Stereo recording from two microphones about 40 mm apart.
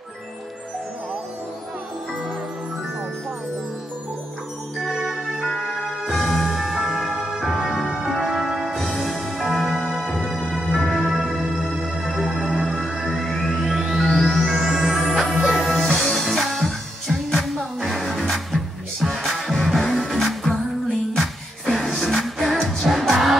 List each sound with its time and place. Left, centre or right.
4.7 s music: centre
5.5 s music: centre
14.0 s music: centre
14.5 s music: centre
15.0 s music: centre